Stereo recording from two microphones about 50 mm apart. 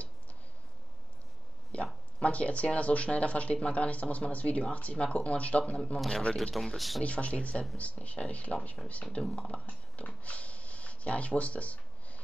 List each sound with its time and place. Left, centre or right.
1.7 s a sound: left
2.1 s speech: left
5.9 s a man's voice: centre
7.0 s speech: left